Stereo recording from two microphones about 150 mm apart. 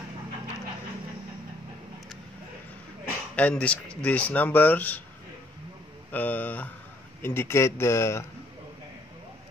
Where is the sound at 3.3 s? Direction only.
10° left (ahead or behind).